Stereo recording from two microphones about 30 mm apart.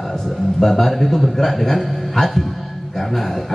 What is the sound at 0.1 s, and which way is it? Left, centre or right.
A man's voice, centre.